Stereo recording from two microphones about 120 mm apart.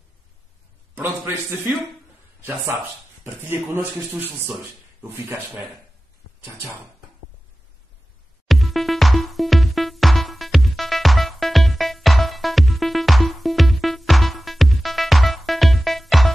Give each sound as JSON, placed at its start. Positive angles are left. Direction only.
{"t": 0.9, "sound": "speech", "side_deg": -20}
{"t": 2.4, "sound": "speech", "side_deg": -20}
{"t": 8.5, "sound": "music", "side_deg": 0}